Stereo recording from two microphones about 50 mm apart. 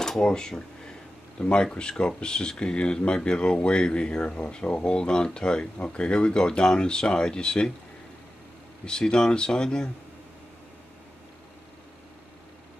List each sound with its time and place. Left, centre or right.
0.0 s speech: centre
8.8 s speech: centre